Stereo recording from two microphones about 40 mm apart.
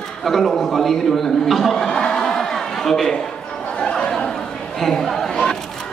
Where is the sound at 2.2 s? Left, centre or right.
Centre.